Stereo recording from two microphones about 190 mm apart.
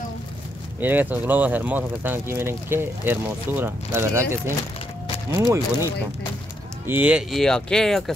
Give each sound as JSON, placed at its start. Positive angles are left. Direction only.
{"t": 0.7, "sound": "speech", "side_deg": -10}
{"t": 6.9, "sound": "speech", "side_deg": -5}